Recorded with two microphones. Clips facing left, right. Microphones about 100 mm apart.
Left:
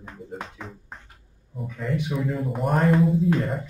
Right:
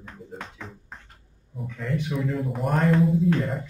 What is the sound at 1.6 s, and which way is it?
A man's voice, 5° left (ahead or behind).